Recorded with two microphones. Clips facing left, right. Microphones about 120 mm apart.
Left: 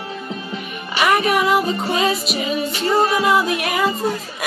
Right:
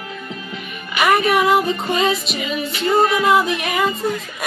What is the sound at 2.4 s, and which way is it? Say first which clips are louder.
Music: left 1 dB; 35° left (ahead or behind).